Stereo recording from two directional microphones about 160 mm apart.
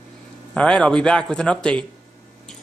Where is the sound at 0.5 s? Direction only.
5° left (ahead or behind).